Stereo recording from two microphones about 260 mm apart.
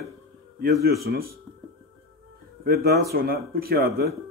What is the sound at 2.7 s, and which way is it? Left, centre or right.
Speech, right.